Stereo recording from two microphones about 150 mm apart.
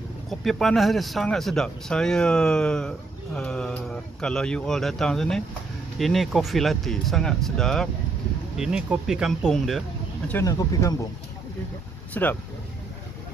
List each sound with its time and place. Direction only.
0.3 s speech: centre (ahead or behind)
10.3 s speech: 25° left (ahead or behind)
12.1 s speech: 10° left (ahead or behind)